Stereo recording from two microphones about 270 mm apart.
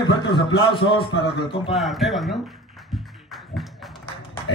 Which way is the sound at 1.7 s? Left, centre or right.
Centre.